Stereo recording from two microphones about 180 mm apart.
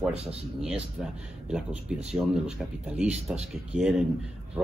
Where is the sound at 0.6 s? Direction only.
5° right (ahead or behind).